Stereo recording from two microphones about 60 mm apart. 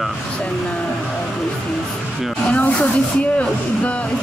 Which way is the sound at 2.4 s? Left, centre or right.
Left.